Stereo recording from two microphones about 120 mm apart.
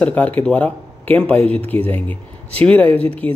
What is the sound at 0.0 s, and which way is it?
Speech, 15° left (ahead or behind).